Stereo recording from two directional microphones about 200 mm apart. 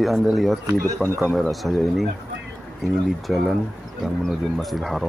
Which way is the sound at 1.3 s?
Centre (ahead or behind).